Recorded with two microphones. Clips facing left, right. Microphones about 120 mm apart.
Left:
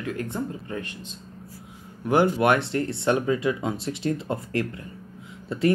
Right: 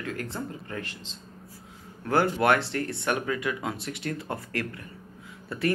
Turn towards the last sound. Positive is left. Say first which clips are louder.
# left 5 dB
turn(degrees=25)  # may be behind; listen again after turning